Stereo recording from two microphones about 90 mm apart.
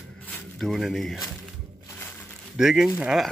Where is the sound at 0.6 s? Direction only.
Centre (ahead or behind).